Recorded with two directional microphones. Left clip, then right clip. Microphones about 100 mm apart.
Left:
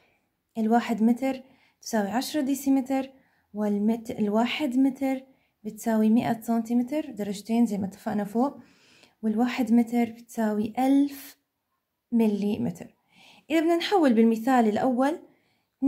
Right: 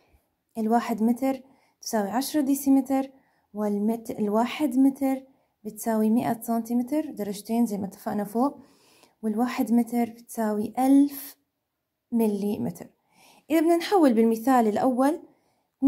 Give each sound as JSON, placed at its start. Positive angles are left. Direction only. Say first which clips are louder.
{"t": 0.6, "sound": "a woman's voice", "louder": "even", "side_deg": -30}